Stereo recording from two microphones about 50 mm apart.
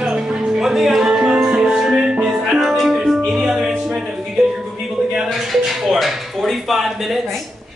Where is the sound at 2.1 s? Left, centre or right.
Right.